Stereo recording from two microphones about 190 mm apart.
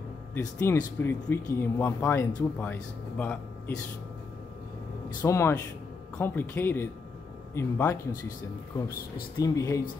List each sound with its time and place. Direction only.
0.3 s speech: 15° left (ahead or behind)
5.2 s speech: 15° left (ahead or behind)
9.4 s speech: 15° left (ahead or behind)